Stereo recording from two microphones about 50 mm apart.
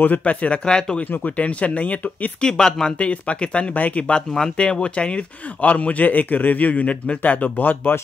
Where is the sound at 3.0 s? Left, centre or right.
Left.